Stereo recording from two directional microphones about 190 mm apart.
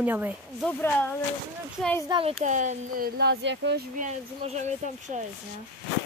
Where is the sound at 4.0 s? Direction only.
40° right (ahead or behind).